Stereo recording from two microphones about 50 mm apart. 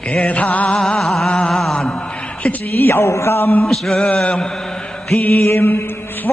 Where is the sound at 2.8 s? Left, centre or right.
Left.